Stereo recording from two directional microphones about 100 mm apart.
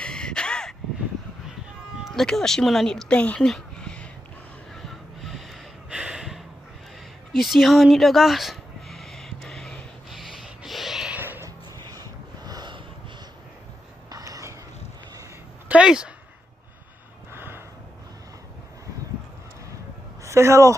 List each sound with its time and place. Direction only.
0.0 s crow: 10° left (ahead or behind)
2.1 s speech: 5° left (ahead or behind)
4.8 s snort: centre (ahead or behind)
5.9 s gasp: 10° right (ahead or behind)
7.4 s a sound: centre (ahead or behind)
11.1 s music: 20° right (ahead or behind)
11.4 s music: 40° right (ahead or behind)
14.1 s a sound: 35° right (ahead or behind)
15.7 s a sound: 10° right (ahead or behind)
17.3 s gasp: 25° right (ahead or behind)
20.2 s speech: 30° right (ahead or behind)